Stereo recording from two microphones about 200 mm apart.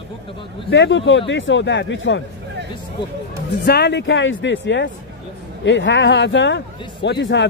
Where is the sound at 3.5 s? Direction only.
55° left (ahead or behind).